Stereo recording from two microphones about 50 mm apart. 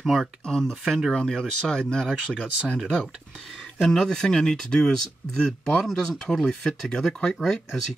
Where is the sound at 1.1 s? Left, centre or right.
Centre.